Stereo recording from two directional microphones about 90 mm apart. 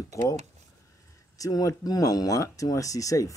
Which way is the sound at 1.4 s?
40° left (ahead or behind).